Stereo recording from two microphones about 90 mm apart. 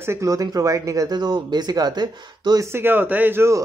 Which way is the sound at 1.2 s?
55° right (ahead or behind).